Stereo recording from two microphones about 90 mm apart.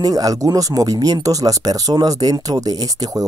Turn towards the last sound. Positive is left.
turn(degrees=-45)  # may be behind; listen again after turning